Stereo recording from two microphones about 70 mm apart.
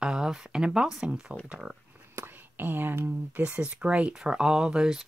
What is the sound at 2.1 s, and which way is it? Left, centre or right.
Speech, right.